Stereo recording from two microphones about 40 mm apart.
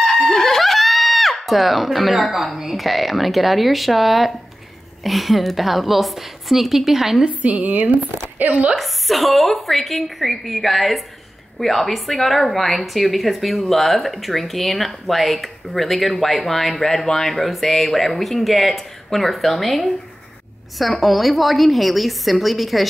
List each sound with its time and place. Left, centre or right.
0.0 s a woman's voice: centre
7.2 s a woman's voice: right
7.7 s a woman's voice: right
8.7 s a woman's voice: centre